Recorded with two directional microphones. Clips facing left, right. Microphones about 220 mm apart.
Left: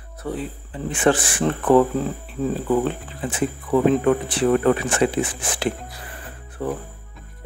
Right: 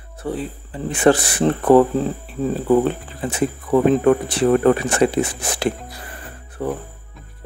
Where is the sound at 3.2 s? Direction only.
40° right (ahead or behind).